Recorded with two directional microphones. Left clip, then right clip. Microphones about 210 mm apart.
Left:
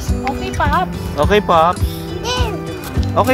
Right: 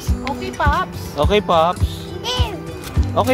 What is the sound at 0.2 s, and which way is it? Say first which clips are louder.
Music: left 2 dB; 50° right (ahead or behind).